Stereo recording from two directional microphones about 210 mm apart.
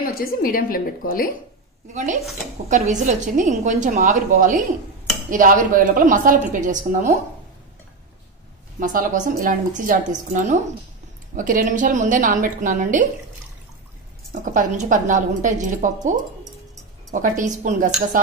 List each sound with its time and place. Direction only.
0.0 s a woman's voice: 45° left (ahead or behind)
2.7 s a woman's voice: 35° right (ahead or behind)
8.7 s a woman's voice: 40° right (ahead or behind)
14.3 s a woman's voice: 40° right (ahead or behind)